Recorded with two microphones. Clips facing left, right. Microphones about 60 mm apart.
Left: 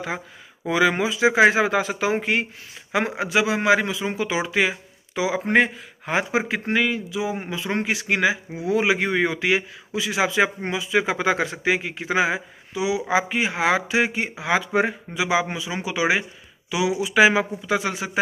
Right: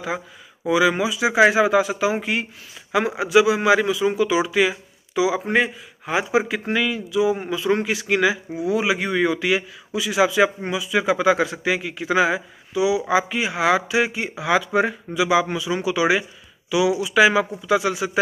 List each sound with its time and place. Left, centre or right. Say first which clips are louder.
0.7 s speech: right 2 dB; left
5.4 s a man's voice: left 1 dB; left
6.3 s speech: right 2 dB; left